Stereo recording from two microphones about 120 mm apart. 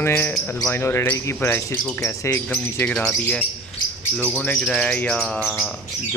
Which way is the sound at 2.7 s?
15° left (ahead or behind).